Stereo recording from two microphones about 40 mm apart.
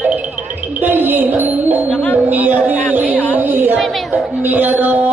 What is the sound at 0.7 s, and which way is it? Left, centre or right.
Music, right.